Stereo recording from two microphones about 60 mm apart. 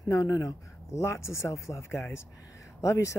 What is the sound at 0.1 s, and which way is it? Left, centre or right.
Speech, left.